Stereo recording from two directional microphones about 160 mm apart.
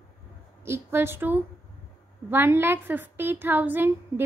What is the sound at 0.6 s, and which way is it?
A woman's voice, 15° right (ahead or behind).